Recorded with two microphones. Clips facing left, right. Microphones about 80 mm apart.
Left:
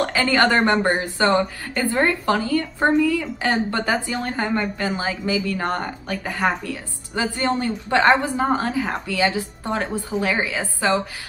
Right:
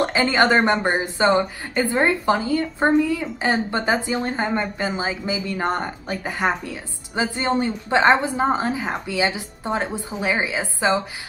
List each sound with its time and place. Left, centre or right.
0.0 s a woman's voice: centre